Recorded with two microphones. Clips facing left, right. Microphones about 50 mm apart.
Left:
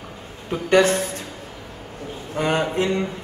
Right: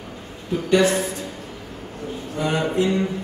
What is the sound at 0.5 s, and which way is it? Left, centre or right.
Speech, left.